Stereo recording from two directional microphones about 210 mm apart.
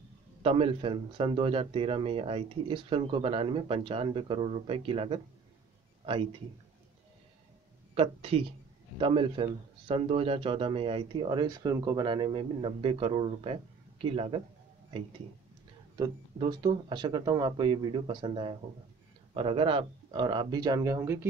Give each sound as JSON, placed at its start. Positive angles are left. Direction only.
{"t": 0.4, "sound": "speech", "side_deg": -25}
{"t": 7.9, "sound": "speech", "side_deg": -25}
{"t": 16.0, "sound": "speech", "side_deg": -20}